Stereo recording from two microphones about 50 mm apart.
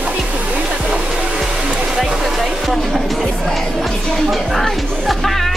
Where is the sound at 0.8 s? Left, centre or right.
Centre.